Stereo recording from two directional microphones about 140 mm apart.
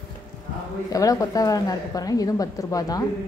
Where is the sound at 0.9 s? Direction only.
25° left (ahead or behind).